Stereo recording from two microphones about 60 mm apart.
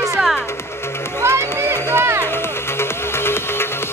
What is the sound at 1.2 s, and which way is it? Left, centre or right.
Music, right.